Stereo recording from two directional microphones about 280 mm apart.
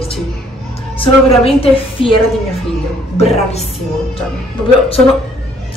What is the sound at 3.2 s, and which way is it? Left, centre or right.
Speech, left.